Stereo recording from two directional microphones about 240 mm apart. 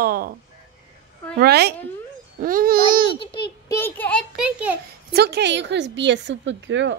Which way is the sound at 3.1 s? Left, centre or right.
Left.